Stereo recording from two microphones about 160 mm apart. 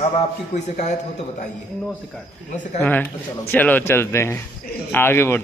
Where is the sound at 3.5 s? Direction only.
10° left (ahead or behind).